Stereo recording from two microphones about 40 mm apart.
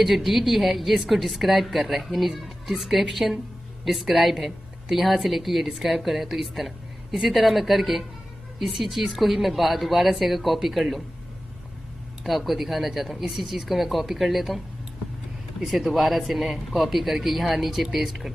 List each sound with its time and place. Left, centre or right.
0.0 s a woman's voice: centre
12.2 s a woman's voice: centre
15.6 s a woman's voice: centre